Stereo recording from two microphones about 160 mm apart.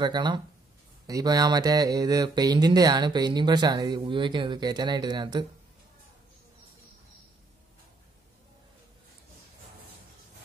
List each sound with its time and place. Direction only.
0.0 s speech: 25° right (ahead or behind)